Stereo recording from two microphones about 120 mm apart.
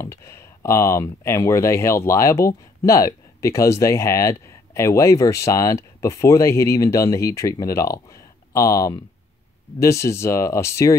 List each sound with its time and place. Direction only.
0.0 s speech: 25° left (ahead or behind)